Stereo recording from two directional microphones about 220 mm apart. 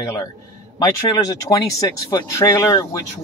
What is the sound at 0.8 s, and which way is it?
Speech, 15° left (ahead or behind).